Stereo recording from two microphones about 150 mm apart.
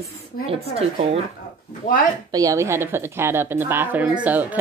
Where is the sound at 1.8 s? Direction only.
60° left (ahead or behind).